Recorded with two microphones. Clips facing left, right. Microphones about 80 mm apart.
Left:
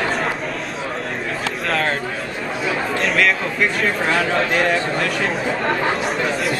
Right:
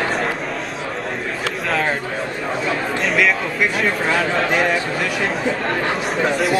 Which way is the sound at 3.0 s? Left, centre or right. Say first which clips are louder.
Right 1 dB; centre.